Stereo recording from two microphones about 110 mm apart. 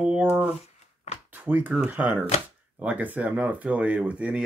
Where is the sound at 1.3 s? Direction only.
15° right (ahead or behind).